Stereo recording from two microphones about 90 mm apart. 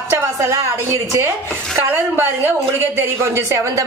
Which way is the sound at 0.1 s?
30° right (ahead or behind).